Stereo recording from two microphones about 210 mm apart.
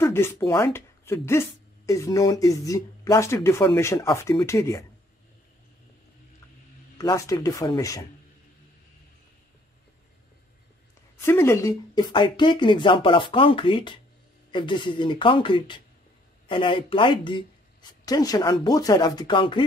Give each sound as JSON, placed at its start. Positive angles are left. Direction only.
{"t": 0.0, "sound": "speech", "side_deg": 10}
{"t": 7.0, "sound": "speech", "side_deg": 15}
{"t": 11.1, "sound": "speech", "side_deg": 10}